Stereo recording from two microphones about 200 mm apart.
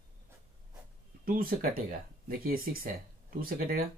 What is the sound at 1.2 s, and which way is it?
Speech, 45° right (ahead or behind).